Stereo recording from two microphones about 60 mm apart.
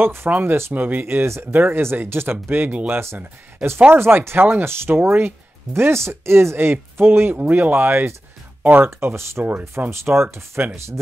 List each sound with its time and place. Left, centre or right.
0.0 s speech: right
3.6 s speech: centre
3.9 s speech: right
9.0 s speech: right
9.4 s speech: right